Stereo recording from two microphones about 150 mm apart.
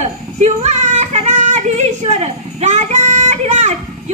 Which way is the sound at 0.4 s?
50° right (ahead or behind).